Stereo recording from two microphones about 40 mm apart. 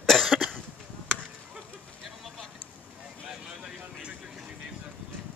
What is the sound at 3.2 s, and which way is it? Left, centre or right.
Vehicle, right.